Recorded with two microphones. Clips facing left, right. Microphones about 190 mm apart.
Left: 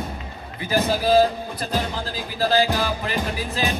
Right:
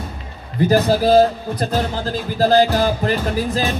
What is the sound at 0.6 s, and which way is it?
Speech, 40° right (ahead or behind).